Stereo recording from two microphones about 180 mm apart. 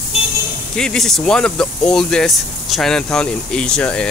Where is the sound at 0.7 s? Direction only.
5° left (ahead or behind).